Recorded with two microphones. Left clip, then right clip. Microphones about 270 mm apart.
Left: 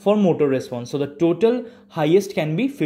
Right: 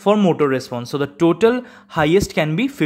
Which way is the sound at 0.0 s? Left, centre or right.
Right.